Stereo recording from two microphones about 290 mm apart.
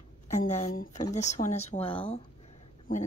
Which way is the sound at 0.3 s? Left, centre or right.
Left.